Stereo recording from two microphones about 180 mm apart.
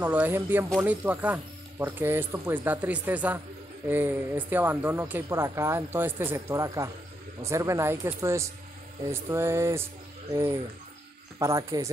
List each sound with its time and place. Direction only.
0.0 s speech: 10° right (ahead or behind)